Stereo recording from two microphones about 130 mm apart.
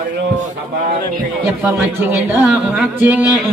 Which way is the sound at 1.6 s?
15° right (ahead or behind).